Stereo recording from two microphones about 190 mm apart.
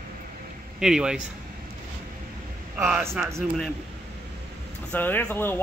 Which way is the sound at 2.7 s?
10° right (ahead or behind).